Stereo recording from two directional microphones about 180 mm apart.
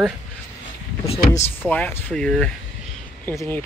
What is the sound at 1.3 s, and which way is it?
Speech, 10° left (ahead or behind).